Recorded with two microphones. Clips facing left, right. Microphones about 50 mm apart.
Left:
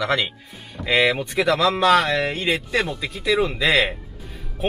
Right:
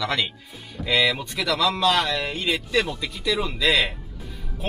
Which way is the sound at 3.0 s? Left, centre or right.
Left.